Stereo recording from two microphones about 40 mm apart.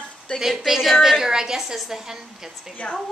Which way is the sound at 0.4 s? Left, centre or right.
Centre.